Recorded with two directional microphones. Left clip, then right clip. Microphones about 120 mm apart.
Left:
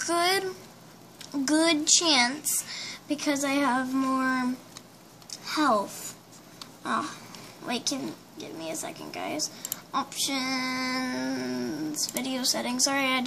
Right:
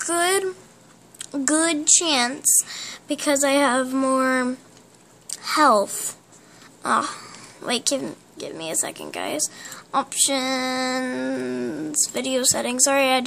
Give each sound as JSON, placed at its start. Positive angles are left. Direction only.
{"t": 0.0, "sound": "speech", "side_deg": -45}
{"t": 1.1, "sound": "a child's voice", "side_deg": -55}
{"t": 6.8, "sound": "a sound", "side_deg": -60}
{"t": 7.6, "sound": "a woman's voice", "side_deg": -55}